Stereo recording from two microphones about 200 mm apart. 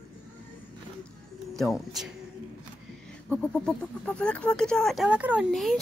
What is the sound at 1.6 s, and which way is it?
Speech, centre (ahead or behind).